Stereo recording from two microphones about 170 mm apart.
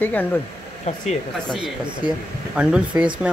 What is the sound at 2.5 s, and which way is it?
Speech, 5° right (ahead or behind).